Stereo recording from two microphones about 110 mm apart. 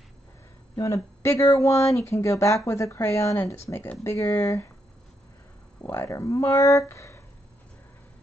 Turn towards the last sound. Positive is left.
turn(degrees=25)  # may be behind; listen again after turning